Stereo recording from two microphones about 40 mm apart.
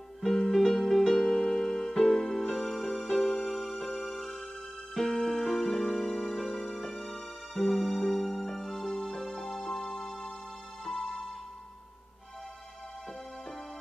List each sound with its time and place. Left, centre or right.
0.2 s music: centre
2.2 s music: centre
2.5 s music: centre
4.9 s music: centre